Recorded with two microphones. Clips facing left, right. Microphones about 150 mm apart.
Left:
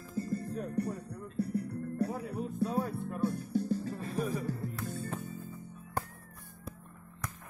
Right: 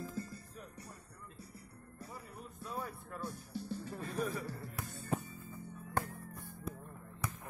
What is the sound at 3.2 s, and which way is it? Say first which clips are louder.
Music: left 11 dB; 60° left (ahead or behind).